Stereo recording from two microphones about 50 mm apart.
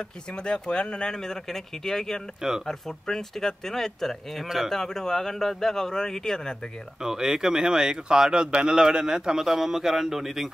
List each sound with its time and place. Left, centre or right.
0.3 s speech: centre
7.0 s speech: centre